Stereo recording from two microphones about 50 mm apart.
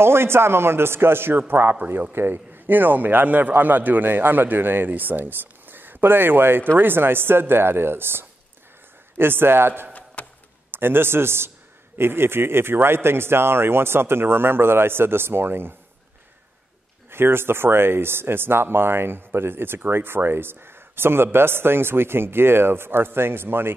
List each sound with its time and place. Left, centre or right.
0.0 s a man's voice: right
10.2 s a sound: left
10.7 s speech: right
17.1 s speech: right